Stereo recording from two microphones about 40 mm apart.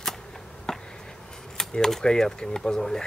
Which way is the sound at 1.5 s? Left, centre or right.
Centre.